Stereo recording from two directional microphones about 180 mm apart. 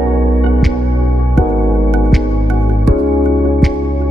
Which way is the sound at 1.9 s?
Centre (ahead or behind).